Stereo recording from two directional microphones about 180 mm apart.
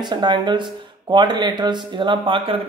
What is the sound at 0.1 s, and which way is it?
Speech, 25° right (ahead or behind).